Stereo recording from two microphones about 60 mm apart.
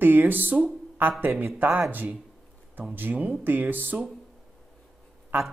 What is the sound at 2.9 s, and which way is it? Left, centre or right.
Speech, right.